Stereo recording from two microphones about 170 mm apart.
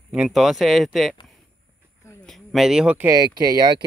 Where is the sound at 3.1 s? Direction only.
20° right (ahead or behind).